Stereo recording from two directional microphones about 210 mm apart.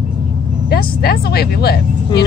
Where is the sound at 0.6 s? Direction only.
50° left (ahead or behind).